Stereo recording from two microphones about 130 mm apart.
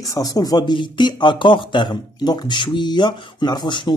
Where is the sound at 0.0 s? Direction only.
25° left (ahead or behind).